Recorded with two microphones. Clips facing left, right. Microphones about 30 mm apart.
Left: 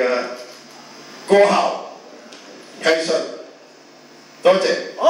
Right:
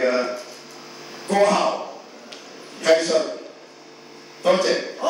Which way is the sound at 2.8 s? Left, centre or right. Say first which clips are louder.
Even; left.